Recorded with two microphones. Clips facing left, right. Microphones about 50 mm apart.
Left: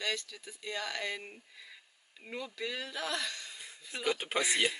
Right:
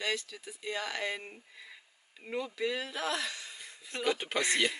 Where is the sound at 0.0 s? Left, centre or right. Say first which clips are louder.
Right 2 dB; centre.